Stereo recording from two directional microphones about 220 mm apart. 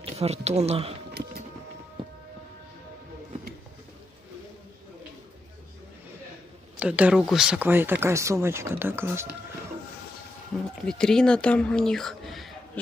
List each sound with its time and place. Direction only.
0.0 s speech: 30° right (ahead or behind)
6.8 s speech: 5° right (ahead or behind)
10.5 s speech: centre (ahead or behind)